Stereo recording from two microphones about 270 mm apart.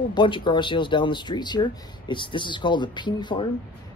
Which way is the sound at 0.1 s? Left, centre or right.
Centre.